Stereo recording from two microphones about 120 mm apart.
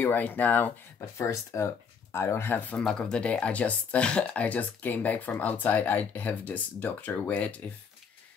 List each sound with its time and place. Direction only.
0.0 s speech: 15° left (ahead or behind)